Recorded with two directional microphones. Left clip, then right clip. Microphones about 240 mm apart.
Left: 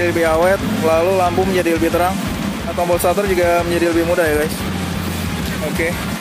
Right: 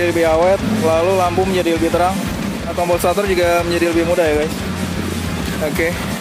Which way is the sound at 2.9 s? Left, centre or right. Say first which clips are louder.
Even; centre.